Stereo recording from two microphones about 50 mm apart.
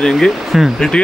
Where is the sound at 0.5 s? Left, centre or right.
Centre.